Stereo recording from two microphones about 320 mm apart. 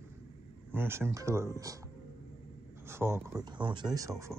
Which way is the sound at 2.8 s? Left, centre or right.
Centre.